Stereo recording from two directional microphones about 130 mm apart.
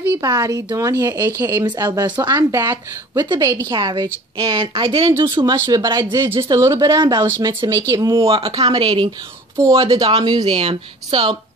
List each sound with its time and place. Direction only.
0.2 s speech: 30° right (ahead or behind)
6.3 s speech: 20° right (ahead or behind)
8.3 s speech: 45° right (ahead or behind)
9.6 s speech: 25° right (ahead or behind)
10.4 s speech: 50° right (ahead or behind)